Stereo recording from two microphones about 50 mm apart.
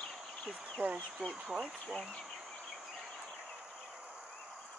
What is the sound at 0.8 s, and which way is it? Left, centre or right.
Speech, right.